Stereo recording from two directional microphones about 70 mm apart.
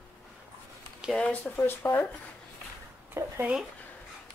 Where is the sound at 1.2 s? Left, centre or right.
Left.